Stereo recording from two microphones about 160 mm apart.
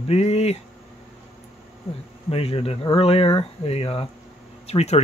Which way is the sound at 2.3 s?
40° left (ahead or behind).